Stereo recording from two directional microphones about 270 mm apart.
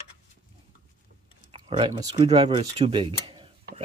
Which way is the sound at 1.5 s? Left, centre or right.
Centre.